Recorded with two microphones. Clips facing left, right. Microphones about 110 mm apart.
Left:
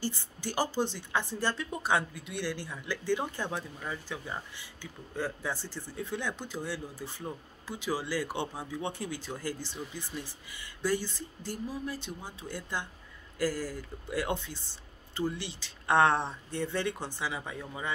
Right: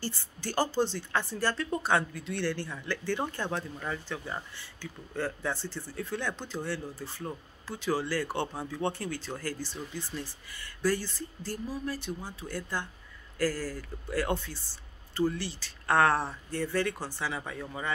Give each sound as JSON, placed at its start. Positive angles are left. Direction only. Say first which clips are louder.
{"t": 0.0, "sound": "speech", "louder": "left 1 dB", "side_deg": 15}